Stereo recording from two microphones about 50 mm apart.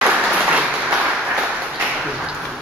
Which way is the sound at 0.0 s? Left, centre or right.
Right.